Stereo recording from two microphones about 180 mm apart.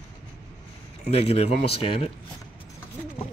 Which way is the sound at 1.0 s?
35° left (ahead or behind).